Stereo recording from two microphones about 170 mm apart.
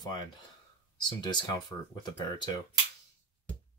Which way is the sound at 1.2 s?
25° left (ahead or behind).